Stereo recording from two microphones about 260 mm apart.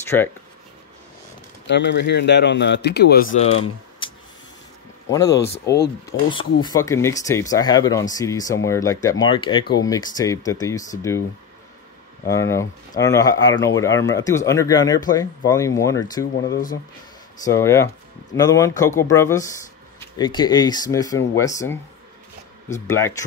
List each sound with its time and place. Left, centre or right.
1.7 s speech: left
5.1 s speech: centre
12.3 s speech: centre
17.4 s speech: centre
22.8 s speech: centre